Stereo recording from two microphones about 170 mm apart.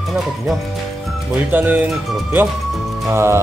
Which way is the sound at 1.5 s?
10° right (ahead or behind).